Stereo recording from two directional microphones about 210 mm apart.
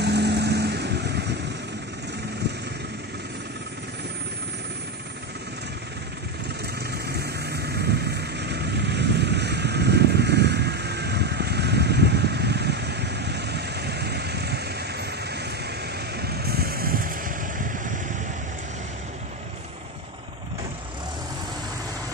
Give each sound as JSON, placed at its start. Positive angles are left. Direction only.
{"t": 0.0, "sound": "vehicle", "side_deg": -55}
{"t": 6.9, "sound": "vehicle", "side_deg": -50}